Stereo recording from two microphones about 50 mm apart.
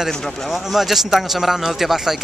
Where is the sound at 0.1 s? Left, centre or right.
Centre.